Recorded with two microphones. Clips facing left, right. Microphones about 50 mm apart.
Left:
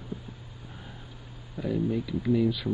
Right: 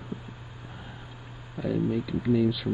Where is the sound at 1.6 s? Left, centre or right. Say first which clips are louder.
Right 1 dB; centre.